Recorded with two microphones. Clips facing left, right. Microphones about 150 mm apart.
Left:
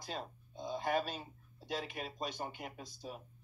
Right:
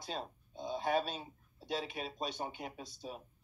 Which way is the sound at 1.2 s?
5° left (ahead or behind).